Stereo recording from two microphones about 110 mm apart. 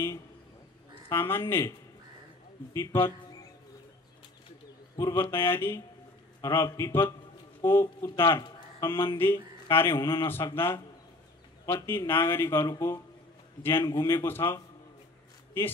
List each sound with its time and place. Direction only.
1.0 s speech: 20° left (ahead or behind)
2.7 s speech: 20° left (ahead or behind)
4.9 s speech: 25° left (ahead or behind)
8.4 s a sound: 40° left (ahead or behind)
8.8 s speech: 20° left (ahead or behind)